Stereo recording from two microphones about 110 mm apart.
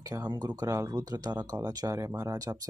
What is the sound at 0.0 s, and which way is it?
Speech, 30° right (ahead or behind).